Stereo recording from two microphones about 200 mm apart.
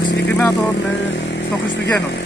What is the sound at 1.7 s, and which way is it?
Speech, 60° left (ahead or behind).